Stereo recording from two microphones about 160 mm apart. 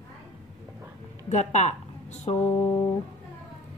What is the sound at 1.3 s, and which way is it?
A woman's voice, 45° left (ahead or behind).